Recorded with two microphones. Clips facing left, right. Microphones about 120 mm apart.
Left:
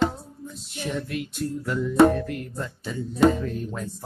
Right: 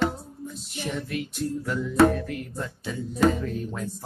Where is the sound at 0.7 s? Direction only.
Centre (ahead or behind).